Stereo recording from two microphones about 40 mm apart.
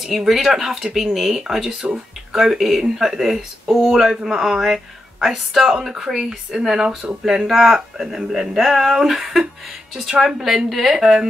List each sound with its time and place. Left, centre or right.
0.0 s speech: centre
7.0 s speech: right; by 11.0 s centre
11.0 s speech: centre